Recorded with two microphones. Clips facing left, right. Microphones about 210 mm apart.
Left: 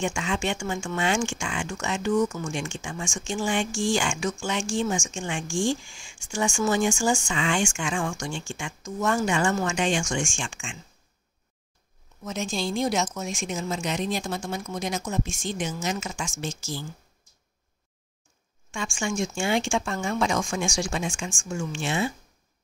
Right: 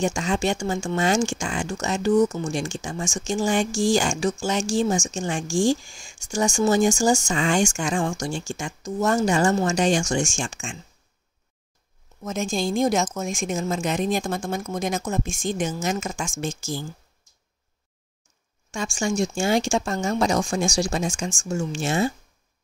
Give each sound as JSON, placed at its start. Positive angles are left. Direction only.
{"t": 0.0, "sound": "speech", "side_deg": -40}
{"t": 12.2, "sound": "a woman's voice", "side_deg": -45}
{"t": 18.7, "sound": "speech", "side_deg": -40}